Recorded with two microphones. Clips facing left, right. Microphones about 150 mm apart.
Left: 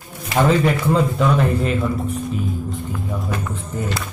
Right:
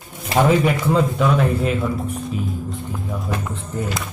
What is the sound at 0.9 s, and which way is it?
Speech, centre (ahead or behind).